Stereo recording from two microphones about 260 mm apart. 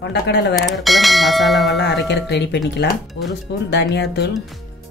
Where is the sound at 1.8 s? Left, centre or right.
Left.